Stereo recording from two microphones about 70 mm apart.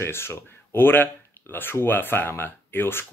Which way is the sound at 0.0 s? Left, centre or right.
Left.